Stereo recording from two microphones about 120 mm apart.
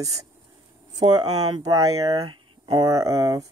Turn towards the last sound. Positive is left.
turn(degrees=-30)  # may be behind; listen again after turning